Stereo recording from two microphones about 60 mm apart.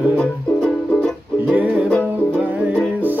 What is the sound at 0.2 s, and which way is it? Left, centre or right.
Music, centre.